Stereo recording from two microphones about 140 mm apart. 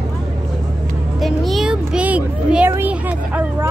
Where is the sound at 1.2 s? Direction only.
Centre (ahead or behind).